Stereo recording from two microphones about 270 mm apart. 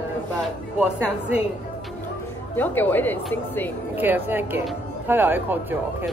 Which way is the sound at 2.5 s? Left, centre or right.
Centre.